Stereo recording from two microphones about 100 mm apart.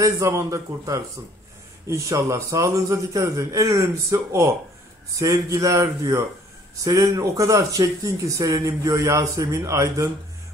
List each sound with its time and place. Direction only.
0.0 s speech: 30° right (ahead or behind)